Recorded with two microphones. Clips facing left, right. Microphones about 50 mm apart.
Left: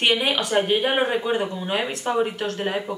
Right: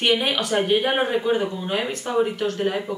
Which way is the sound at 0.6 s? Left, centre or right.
Centre.